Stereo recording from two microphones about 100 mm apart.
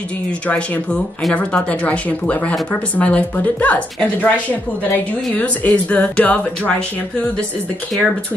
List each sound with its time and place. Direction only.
0.5 s speech: 15° left (ahead or behind)